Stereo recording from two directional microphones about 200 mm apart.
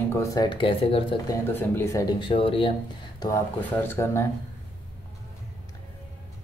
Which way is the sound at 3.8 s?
10° left (ahead or behind).